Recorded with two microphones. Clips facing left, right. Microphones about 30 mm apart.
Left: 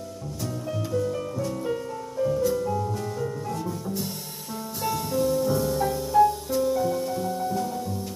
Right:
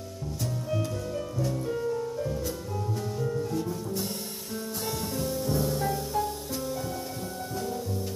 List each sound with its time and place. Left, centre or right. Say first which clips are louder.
1.7 s music: right 1 dB; centre
3.5 s music: even; centre